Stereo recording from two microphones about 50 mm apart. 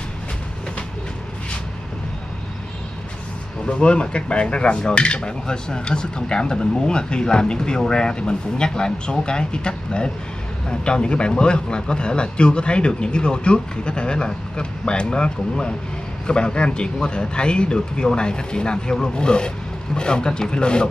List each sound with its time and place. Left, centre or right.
3.6 s speech: left